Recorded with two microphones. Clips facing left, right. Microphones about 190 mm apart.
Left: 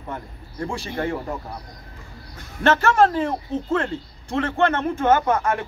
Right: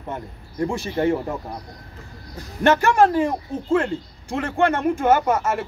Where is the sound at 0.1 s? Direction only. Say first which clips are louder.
Right 2 dB; 20° right (ahead or behind).